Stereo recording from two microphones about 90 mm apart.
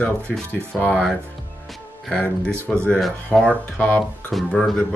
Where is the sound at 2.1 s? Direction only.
15° left (ahead or behind).